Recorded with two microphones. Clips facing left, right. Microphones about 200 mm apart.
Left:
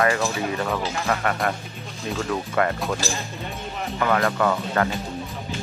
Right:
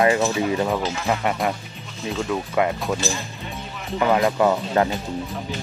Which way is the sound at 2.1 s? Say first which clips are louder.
Right 1 dB; 5° right (ahead or behind).